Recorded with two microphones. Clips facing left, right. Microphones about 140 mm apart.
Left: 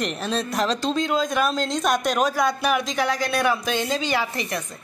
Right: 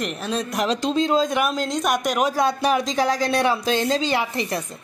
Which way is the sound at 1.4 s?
15° right (ahead or behind).